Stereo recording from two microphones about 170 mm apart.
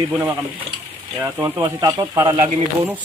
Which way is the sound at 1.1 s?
15° right (ahead or behind).